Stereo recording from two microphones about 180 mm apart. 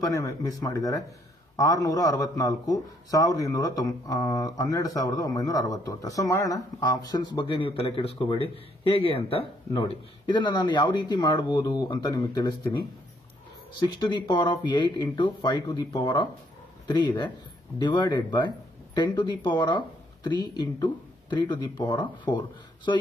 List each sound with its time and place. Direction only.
0.0 s a man's voice: 20° left (ahead or behind)